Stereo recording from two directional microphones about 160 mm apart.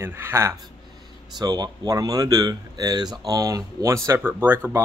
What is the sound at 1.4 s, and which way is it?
Speech, 25° right (ahead or behind).